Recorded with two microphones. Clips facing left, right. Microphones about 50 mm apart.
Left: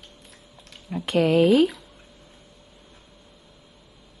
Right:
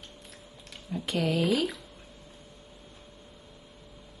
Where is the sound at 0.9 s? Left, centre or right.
Left.